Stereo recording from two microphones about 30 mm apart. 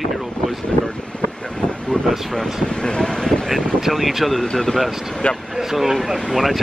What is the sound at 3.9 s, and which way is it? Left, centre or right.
Speech, centre.